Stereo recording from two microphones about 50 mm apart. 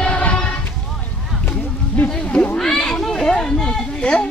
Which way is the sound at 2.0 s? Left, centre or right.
Left.